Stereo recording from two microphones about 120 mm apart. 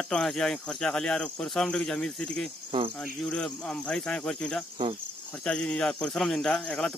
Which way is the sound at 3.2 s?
5° left (ahead or behind).